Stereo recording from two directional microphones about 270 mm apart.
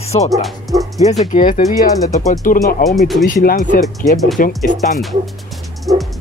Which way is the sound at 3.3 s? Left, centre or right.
Left.